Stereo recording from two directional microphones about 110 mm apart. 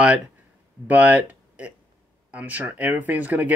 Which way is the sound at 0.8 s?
15° right (ahead or behind).